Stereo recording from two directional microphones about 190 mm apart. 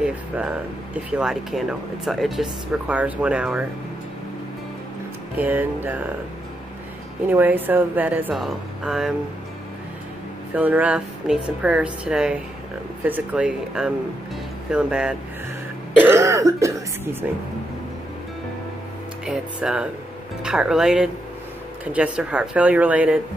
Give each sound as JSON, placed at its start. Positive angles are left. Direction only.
{"t": 0.0, "sound": "speech", "side_deg": -5}
{"t": 5.4, "sound": "a woman's voice", "side_deg": -10}
{"t": 7.2, "sound": "a woman's voice", "side_deg": -10}
{"t": 10.5, "sound": "a woman's voice", "side_deg": -10}
{"t": 19.2, "sound": "a woman's voice", "side_deg": -5}